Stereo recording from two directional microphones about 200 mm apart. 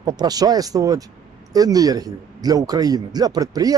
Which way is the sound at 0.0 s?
20° right (ahead or behind).